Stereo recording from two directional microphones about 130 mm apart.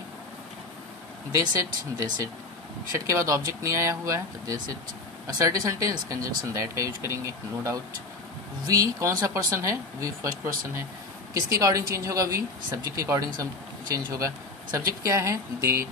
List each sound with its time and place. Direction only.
1.3 s speech: 25° right (ahead or behind)